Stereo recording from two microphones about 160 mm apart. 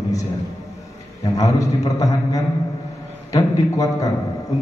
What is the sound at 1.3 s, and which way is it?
A man's voice, 20° left (ahead or behind).